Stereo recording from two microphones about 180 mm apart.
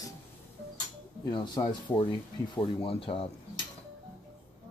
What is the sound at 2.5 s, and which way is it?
Speech, 30° left (ahead or behind).